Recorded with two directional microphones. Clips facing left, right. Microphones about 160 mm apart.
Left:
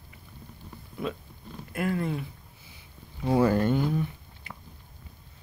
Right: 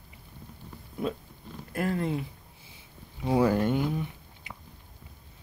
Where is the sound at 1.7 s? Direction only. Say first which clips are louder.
Even; 35° right (ahead or behind).